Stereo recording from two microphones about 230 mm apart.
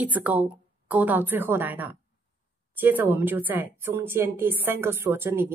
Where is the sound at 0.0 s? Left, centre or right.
Centre.